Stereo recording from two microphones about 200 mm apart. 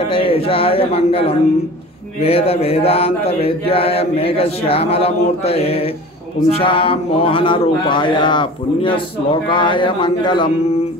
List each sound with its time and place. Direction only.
0.0 s a man's voice: 25° left (ahead or behind)